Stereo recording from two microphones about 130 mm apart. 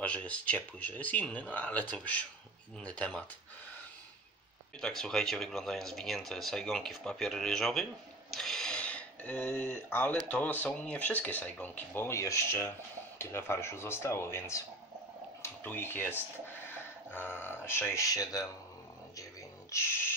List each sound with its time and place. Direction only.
0.0 s speech: 10° left (ahead or behind)
4.8 s speech: 5° left (ahead or behind)
8.3 s a sound: 5° left (ahead or behind)
10.2 s speech: 10° left (ahead or behind); by 18.5 s 30° left (ahead or behind)
19.7 s speech: 20° left (ahead or behind)